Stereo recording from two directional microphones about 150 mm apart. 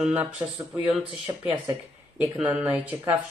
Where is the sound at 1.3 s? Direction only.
20° right (ahead or behind).